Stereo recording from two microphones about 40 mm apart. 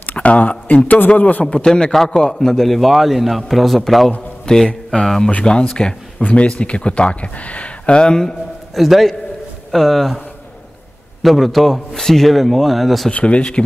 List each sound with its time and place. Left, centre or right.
0.0 s speech: left
1.4 s a man's voice: left; by 4.1 s centre
4.5 s speech: centre
6.2 s speech: left; by 8.4 s centre
8.7 s a man's voice: centre
11.2 s a man's voice: centre
13.1 s speech: left